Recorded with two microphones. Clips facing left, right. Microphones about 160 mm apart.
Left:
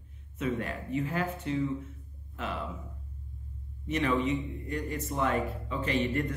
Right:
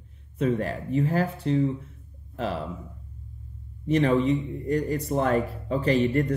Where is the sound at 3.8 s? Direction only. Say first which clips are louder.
Right 7 dB; 35° right (ahead or behind).